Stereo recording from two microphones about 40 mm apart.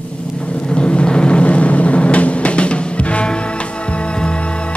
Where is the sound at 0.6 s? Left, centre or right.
Left.